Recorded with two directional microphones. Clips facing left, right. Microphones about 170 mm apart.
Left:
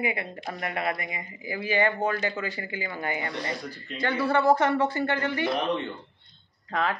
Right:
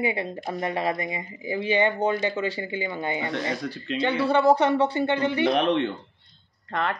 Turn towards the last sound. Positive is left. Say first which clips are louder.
# even
turn(degrees=0)  # may be behind; listen again after turning